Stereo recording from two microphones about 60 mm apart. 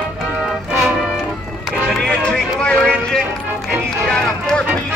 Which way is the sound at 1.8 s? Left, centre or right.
Centre.